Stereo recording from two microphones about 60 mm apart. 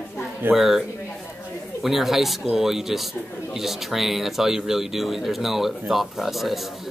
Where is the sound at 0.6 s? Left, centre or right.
Centre.